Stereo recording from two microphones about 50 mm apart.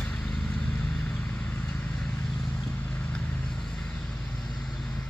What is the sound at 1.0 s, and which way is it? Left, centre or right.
Vehicle, left.